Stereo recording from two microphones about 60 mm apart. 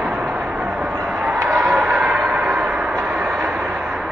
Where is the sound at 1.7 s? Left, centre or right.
Centre.